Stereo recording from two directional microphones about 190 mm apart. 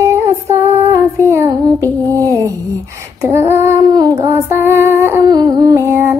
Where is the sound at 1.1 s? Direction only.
15° right (ahead or behind).